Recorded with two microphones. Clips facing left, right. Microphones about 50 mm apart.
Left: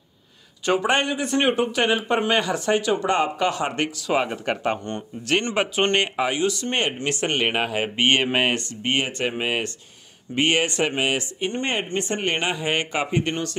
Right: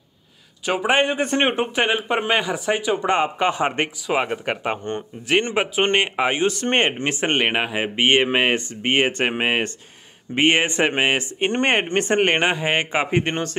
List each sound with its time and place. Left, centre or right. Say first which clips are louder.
0.7 s speech: right 1 dB; centre
1.0 s speech: right 2 dB; right; by 6.2 s centre
6.2 s speech: right 3 dB; right
7.4 s speech: right 1 dB; centre; by 11.4 s right
11.4 s speech: right 7 dB; right